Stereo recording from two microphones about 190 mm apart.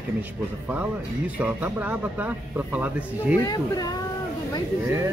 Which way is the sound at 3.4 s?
20° left (ahead or behind).